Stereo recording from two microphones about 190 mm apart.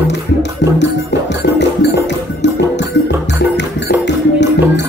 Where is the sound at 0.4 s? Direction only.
65° left (ahead or behind).